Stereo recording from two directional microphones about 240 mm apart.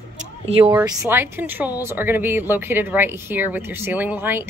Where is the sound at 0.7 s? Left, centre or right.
Centre.